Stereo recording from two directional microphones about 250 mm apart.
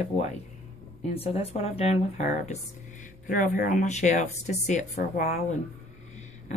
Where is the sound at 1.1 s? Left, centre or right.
Left.